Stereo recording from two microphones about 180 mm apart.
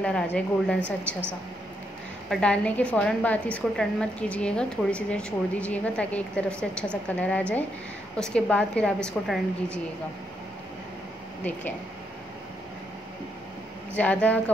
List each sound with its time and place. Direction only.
0.0 s a woman's voice: 5° left (ahead or behind)
2.2 s a woman's voice: 5° left (ahead or behind)
13.9 s a woman's voice: 10° left (ahead or behind)